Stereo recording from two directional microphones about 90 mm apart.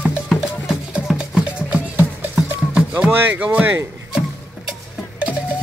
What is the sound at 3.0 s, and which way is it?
Speech, 15° right (ahead or behind).